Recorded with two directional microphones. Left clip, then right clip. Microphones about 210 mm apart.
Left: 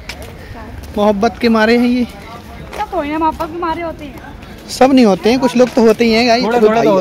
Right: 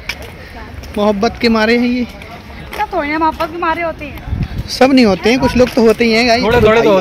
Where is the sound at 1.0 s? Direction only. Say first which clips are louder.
Even; centre (ahead or behind).